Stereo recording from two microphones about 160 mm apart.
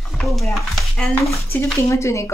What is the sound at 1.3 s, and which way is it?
A woman's voice, 15° left (ahead or behind).